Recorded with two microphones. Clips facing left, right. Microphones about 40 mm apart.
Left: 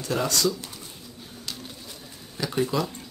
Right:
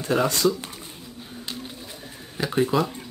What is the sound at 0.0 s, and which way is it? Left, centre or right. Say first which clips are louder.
Speech: right 4 dB; right.